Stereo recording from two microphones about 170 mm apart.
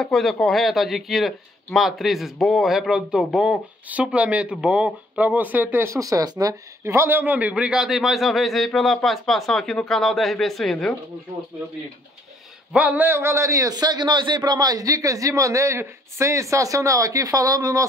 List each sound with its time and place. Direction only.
0.0 s a man's voice: centre (ahead or behind)
12.7 s a man's voice: 10° right (ahead or behind)